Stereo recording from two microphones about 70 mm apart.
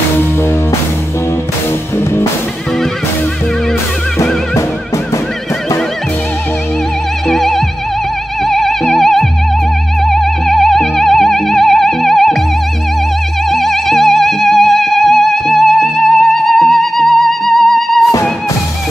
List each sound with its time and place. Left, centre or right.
4.6 s music: left
7.2 s music: centre
13.5 s music: centre